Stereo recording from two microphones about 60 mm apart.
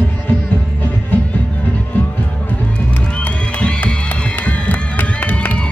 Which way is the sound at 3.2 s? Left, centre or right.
Left.